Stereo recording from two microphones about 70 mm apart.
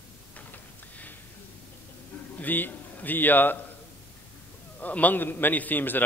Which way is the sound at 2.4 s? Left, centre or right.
Left.